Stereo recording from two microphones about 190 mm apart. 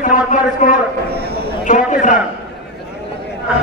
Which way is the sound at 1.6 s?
40° left (ahead or behind).